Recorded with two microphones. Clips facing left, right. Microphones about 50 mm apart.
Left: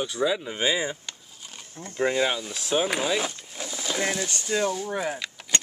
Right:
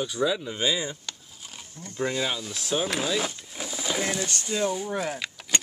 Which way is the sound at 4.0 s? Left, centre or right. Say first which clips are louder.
Left 3 dB; centre.